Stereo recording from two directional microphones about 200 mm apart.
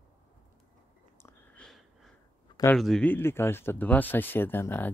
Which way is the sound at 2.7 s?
5° left (ahead or behind).